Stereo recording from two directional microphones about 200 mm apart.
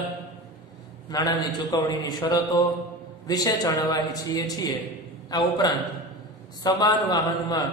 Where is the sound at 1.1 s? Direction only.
20° left (ahead or behind).